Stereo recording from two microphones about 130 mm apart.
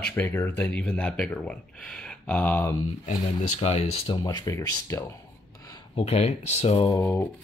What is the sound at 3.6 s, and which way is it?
Speech, 55° left (ahead or behind).